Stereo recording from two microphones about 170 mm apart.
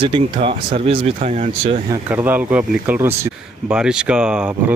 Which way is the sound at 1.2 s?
45° right (ahead or behind).